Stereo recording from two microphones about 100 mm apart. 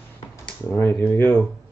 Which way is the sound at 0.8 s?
20° left (ahead or behind).